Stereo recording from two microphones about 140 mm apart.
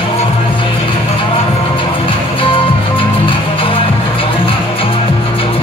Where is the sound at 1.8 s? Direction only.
40° left (ahead or behind).